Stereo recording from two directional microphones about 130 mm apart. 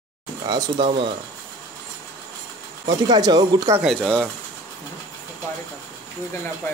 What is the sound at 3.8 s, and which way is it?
Speech, 5° left (ahead or behind).